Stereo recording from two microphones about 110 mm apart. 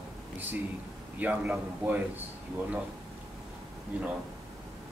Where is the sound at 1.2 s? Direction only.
15° right (ahead or behind).